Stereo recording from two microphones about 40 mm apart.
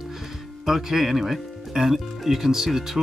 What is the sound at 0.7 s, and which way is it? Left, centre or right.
Speech, centre.